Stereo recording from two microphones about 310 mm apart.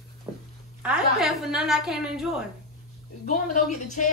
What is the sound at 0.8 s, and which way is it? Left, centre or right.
A woman's voice, centre.